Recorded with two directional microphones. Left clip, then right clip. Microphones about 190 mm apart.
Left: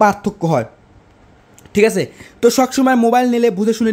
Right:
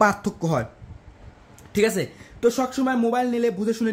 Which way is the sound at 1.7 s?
30° left (ahead or behind).